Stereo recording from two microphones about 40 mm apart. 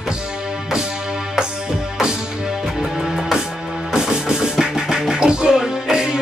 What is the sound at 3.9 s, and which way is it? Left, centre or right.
Music, centre.